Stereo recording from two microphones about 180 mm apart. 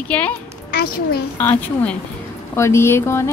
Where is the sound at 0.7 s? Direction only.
60° left (ahead or behind).